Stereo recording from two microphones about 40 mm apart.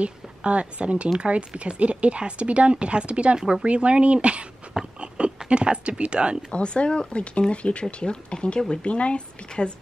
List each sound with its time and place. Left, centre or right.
0.0 s speech: right
3.3 s speech: centre
3.6 s speech: right
5.0 s a sound: right
5.5 s speech: right
6.5 s speech: left